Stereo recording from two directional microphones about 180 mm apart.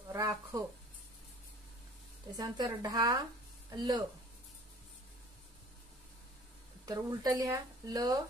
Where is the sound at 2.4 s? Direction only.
20° right (ahead or behind).